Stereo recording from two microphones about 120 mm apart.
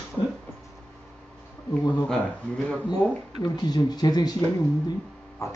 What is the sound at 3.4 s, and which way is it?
Speech, 35° left (ahead or behind).